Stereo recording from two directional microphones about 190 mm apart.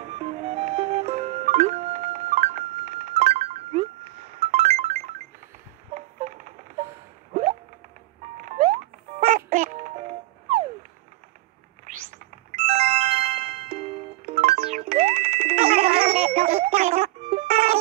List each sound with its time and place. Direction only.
0.2 s music: 35° right (ahead or behind)
5.9 s a sound: 40° right (ahead or behind)
8.4 s music: 40° right (ahead or behind)
12.4 s music: 30° right (ahead or behind)